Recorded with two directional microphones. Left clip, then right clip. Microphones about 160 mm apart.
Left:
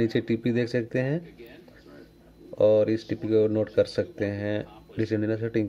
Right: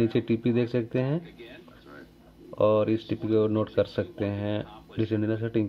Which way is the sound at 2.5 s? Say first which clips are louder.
Left 2 dB; 10° left (ahead or behind).